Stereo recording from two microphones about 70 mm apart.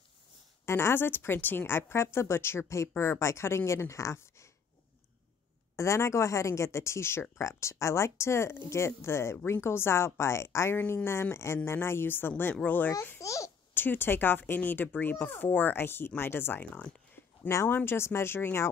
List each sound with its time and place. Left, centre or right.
0.7 s a woman's voice: left
5.8 s a woman's voice: left
13.2 s speech: left
13.7 s a woman's voice: left